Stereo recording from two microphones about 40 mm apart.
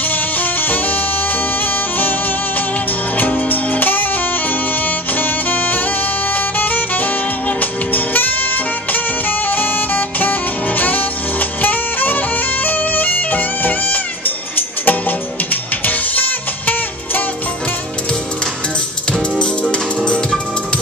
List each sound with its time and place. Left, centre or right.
0.4 s music: left
3.2 s music: left
5.2 s saxophone: left
6.3 s music: left
9.5 s saxophone: left
10.8 s music: left
14.9 s music: left
19.3 s music: left